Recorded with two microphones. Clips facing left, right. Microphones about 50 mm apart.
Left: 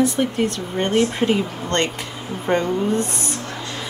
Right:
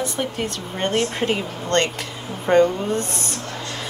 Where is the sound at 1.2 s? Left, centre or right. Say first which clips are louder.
Left 3 dB; left.